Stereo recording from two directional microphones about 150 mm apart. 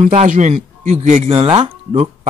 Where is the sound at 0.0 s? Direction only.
45° right (ahead or behind).